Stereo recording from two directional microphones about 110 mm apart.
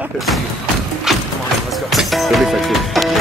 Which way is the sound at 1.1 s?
5° right (ahead or behind).